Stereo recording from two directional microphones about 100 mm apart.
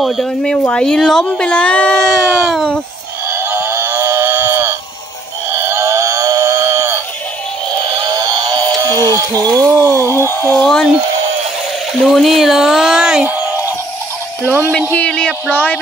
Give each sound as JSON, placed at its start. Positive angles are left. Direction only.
{"t": 0.0, "sound": "speech", "side_deg": 0}
{"t": 3.3, "sound": "livestock", "side_deg": -25}
{"t": 5.7, "sound": "a sound", "side_deg": -30}
{"t": 8.1, "sound": "a sound", "side_deg": -40}
{"t": 9.4, "sound": "speech", "side_deg": -35}
{"t": 10.6, "sound": "speech", "side_deg": 5}
{"t": 12.0, "sound": "speech", "side_deg": 0}
{"t": 14.4, "sound": "speech", "side_deg": -20}
{"t": 14.9, "sound": "speech", "side_deg": 10}